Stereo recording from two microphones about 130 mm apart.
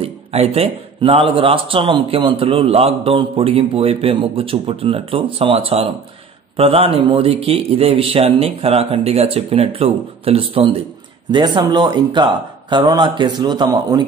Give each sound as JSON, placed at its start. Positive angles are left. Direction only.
{"t": 0.0, "sound": "speech", "side_deg": -50}